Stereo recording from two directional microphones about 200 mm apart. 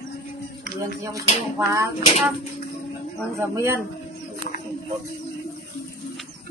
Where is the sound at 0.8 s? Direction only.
15° right (ahead or behind).